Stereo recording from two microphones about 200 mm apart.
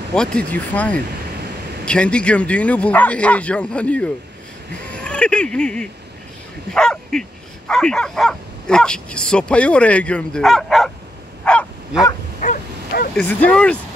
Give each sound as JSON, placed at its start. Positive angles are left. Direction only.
{"t": 0.1, "sound": "speech", "side_deg": 5}
{"t": 11.4, "sound": "bow-wow", "side_deg": 5}
{"t": 12.4, "sound": "dog", "side_deg": 40}
{"t": 13.1, "sound": "speech", "side_deg": 5}